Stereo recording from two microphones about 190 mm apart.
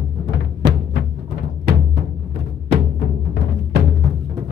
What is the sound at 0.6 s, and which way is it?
Music, 25° right (ahead or behind).